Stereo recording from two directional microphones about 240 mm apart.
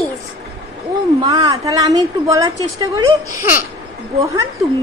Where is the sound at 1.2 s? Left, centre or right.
Centre.